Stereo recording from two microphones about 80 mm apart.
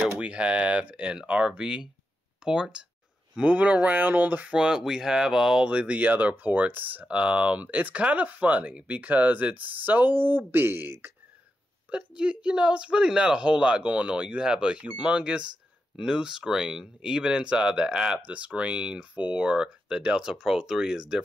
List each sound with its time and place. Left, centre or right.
0.0 s speech: centre
11.9 s speech: centre